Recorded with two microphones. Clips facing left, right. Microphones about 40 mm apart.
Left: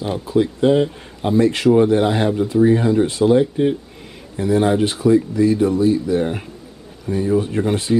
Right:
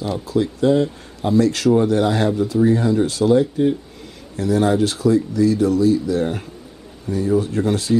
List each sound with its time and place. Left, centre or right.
0.0 s speech: left